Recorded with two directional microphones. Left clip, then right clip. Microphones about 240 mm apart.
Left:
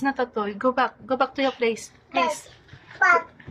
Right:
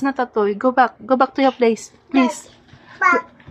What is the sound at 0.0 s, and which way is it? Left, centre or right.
A woman's voice, right.